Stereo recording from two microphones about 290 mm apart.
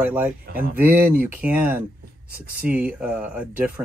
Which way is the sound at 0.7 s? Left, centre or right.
Centre.